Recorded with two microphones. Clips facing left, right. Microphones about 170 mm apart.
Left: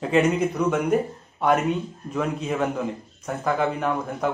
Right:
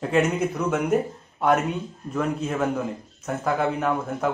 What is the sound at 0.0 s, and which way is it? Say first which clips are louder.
Speech: left 2 dB; centre (ahead or behind).